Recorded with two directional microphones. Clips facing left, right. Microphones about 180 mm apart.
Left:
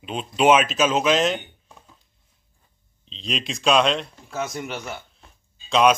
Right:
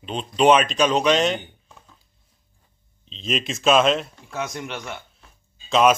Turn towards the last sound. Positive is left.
turn(degrees=0)  # may be behind; listen again after turning